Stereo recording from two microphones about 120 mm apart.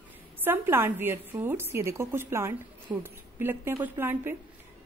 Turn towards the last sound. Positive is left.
turn(degrees=-20)  # may be behind; listen again after turning